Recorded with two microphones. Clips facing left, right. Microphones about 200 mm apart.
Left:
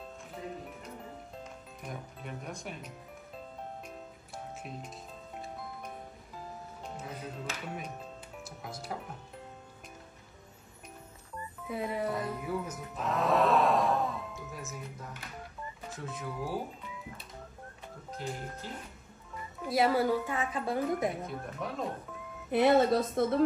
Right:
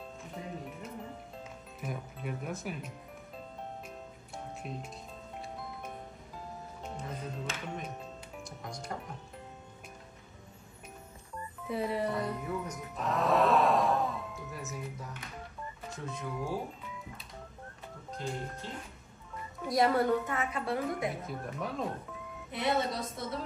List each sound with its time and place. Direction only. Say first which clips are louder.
1.8 s speech: right 4 dB; 5° right (ahead or behind)
4.6 s speech: right 2 dB; centre (ahead or behind)
5.4 s music: even; centre (ahead or behind)
11.6 s speech: right 1 dB; centre (ahead or behind)
18.1 s speech: right 1 dB; centre (ahead or behind)
20.3 s a woman's voice: left 1 dB; 20° left (ahead or behind)
21.2 s speech: even; centre (ahead or behind)
22.5 s speech: left 8 dB; 55° left (ahead or behind)